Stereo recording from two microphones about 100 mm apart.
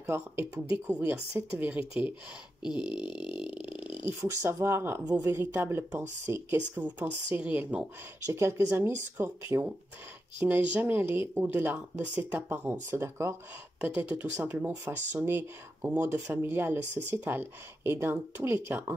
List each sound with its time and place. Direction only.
0.0 s speech: 25° right (ahead or behind)
1.1 s speech: 10° right (ahead or behind)
2.9 s a sound: 50° left (ahead or behind)
3.3 s speech: 10° right (ahead or behind)
5.0 s a woman's voice: 40° right (ahead or behind)
5.4 s speech: 20° right (ahead or behind)
8.3 s speech: 25° right (ahead or behind)
10.4 s speech: 15° right (ahead or behind)